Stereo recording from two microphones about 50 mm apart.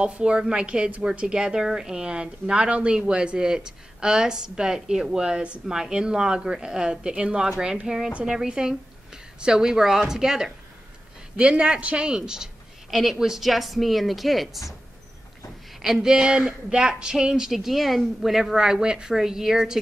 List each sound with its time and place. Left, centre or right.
0.0 s a woman's voice: right
7.4 s a woman's voice: centre
11.3 s a woman's voice: right; by 14.6 s centre
15.8 s speech: centre
17.6 s speech: centre